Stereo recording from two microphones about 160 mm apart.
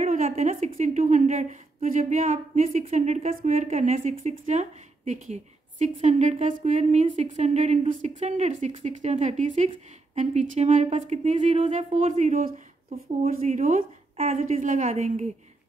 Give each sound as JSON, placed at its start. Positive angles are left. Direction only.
{"t": 0.0, "sound": "a woman's voice", "side_deg": -50}
{"t": 14.1, "sound": "a woman's voice", "side_deg": -40}